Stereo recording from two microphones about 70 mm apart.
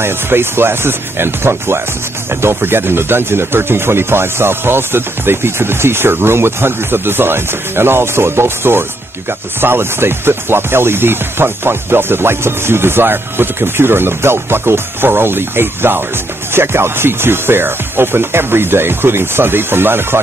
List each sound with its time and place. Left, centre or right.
0.0 s speech: right